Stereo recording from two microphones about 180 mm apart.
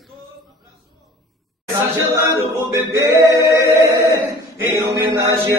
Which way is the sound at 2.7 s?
15° right (ahead or behind).